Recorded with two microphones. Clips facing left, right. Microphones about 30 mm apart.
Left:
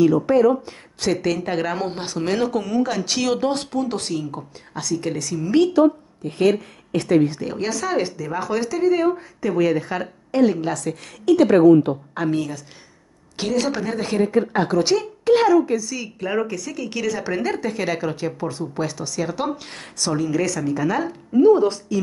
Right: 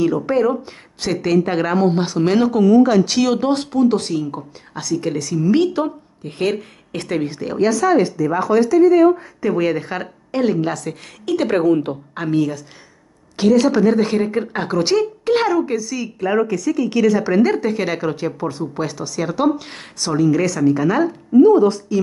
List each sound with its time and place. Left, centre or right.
0.0 s a woman's voice: right
5.7 s a woman's voice: right
7.5 s speech: centre
9.4 s a woman's voice: centre
11.5 s speech: right
12.3 s a woman's voice: centre
21.4 s speech: centre